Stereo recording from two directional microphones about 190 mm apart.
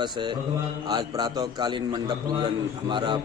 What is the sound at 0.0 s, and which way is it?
A man's voice, 25° right (ahead or behind).